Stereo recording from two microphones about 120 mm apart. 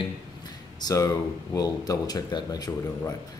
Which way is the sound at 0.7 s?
30° left (ahead or behind).